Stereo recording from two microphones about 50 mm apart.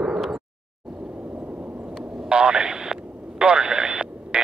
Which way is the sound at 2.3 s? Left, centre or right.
Centre.